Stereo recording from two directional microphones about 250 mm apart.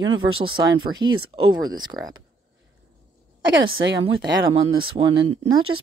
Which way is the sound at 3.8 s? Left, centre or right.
Right.